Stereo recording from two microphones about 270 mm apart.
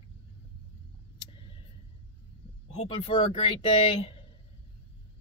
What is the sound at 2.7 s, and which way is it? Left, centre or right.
Speech, left.